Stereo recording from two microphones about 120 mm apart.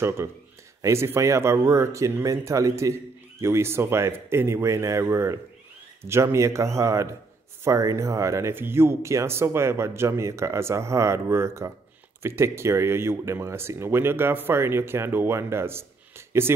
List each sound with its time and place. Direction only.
0.8 s speech: 20° right (ahead or behind)